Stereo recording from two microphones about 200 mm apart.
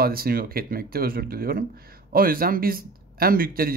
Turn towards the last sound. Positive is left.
turn(degrees=-45)  # may be behind; listen again after turning